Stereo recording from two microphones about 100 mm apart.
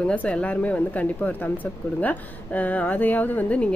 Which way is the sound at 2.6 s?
15° left (ahead or behind).